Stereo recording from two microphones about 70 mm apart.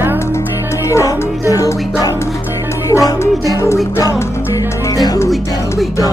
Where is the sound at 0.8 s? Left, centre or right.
Left.